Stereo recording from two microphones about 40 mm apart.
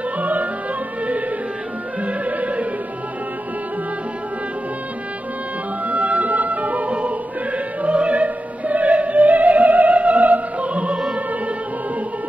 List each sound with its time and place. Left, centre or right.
0.2 s music: right
2.0 s music: right
5.9 s music: right
10.7 s opera: right